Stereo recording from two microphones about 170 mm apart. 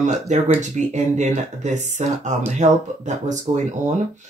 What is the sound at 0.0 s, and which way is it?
Speech, 45° right (ahead or behind).